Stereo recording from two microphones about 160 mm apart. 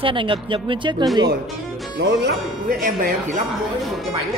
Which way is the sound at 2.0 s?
75° right (ahead or behind).